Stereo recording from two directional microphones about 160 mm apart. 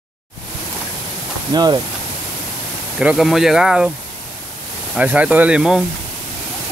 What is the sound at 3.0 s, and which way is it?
Speech, 5° right (ahead or behind).